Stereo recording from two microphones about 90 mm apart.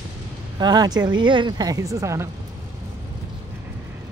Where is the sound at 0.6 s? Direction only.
50° right (ahead or behind).